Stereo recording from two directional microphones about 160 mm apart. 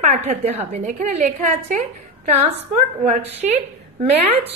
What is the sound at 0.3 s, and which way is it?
A woman's voice, 40° right (ahead or behind).